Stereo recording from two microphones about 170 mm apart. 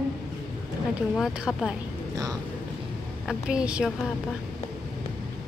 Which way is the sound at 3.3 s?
5° right (ahead or behind).